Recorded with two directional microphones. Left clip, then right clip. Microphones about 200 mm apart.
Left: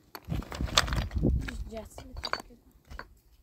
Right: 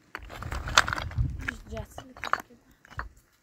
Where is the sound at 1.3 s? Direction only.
5° right (ahead or behind).